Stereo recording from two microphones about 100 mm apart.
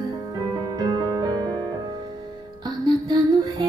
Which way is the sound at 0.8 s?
40° right (ahead or behind).